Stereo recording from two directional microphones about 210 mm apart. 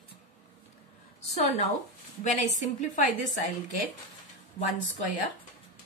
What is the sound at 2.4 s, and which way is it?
A woman's voice, 35° left (ahead or behind).